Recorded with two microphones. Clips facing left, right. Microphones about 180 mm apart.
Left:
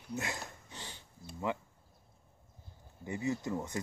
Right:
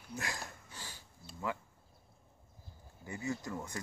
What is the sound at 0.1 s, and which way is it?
Sniff, 20° left (ahead or behind).